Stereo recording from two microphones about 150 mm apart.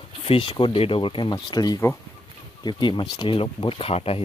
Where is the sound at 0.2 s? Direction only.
35° left (ahead or behind).